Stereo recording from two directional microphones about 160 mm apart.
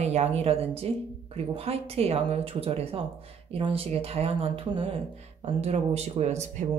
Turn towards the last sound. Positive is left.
turn(degrees=-45)  # may be behind; listen again after turning